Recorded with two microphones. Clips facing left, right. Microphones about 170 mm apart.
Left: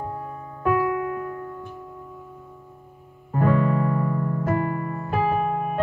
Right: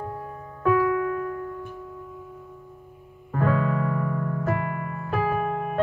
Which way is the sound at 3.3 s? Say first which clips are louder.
Left 3 dB; 25° left (ahead or behind).